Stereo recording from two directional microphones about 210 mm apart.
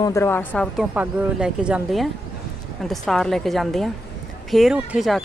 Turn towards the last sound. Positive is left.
turn(degrees=-5)  # may be behind; listen again after turning